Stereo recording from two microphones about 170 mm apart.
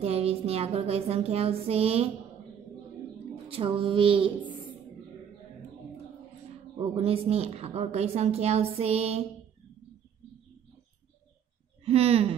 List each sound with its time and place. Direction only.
0.0 s a woman's voice: 35° right (ahead or behind)
3.4 s a woman's voice: 30° right (ahead or behind)
6.8 s a woman's voice: 35° right (ahead or behind)
11.8 s a woman's voice: 35° right (ahead or behind)